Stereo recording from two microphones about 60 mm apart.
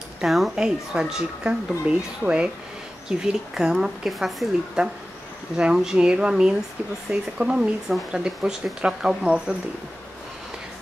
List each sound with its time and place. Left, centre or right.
0.2 s speech: centre
0.6 s a woman's voice: centre